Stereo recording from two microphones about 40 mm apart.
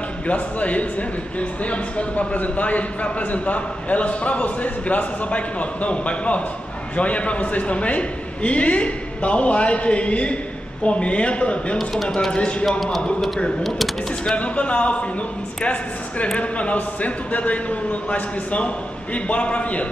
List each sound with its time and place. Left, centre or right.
0.3 s speech: left
11.8 s speech: centre
12.3 s a man's voice: left
13.6 s typing: centre
14.3 s speech: left